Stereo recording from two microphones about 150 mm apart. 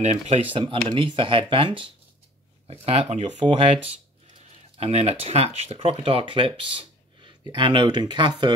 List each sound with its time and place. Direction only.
0.0 s speech: 45° right (ahead or behind); by 8.5 s 30° right (ahead or behind)